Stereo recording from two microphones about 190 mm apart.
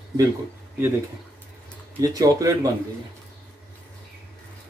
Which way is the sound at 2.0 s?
20° right (ahead or behind).